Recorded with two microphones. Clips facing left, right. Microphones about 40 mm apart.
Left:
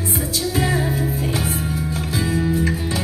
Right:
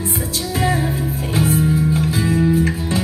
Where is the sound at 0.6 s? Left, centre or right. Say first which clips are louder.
Right 2 dB; right.